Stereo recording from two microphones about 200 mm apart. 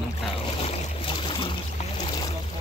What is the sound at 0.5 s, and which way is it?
Boat, 25° left (ahead or behind).